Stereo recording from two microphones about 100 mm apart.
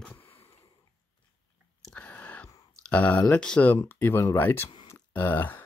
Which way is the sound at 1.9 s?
15° left (ahead or behind).